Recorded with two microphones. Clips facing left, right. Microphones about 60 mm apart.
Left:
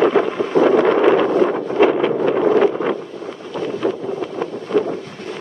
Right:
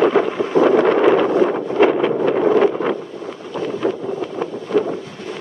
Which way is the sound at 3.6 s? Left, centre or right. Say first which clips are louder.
Even; centre.